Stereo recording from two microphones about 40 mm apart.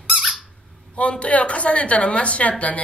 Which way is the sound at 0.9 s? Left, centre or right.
Left.